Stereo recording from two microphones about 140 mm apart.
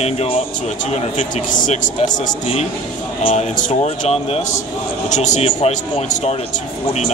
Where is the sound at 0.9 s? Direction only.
60° left (ahead or behind).